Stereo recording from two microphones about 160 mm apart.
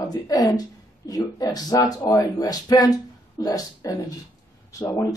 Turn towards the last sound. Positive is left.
turn(degrees=20)  # may be behind; listen again after turning